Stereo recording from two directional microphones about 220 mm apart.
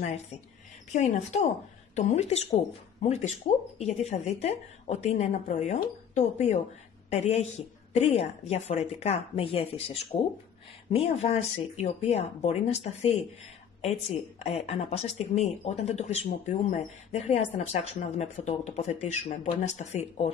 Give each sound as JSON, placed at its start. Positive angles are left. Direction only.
{"t": 0.0, "sound": "speech", "side_deg": 30}